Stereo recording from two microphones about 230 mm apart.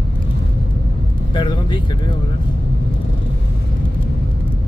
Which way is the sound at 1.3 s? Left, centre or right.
Centre.